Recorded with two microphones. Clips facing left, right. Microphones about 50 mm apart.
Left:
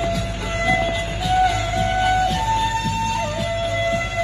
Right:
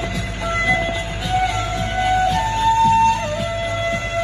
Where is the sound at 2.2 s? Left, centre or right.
Right.